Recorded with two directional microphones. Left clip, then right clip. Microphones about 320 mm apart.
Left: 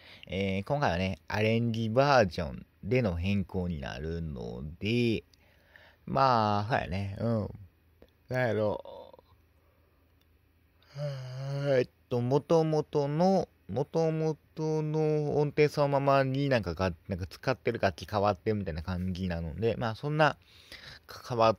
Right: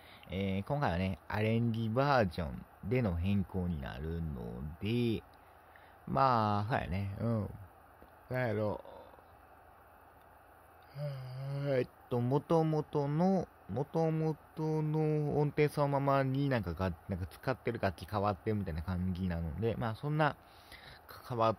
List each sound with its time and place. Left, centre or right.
0.0 s speech: centre
10.9 s speech: centre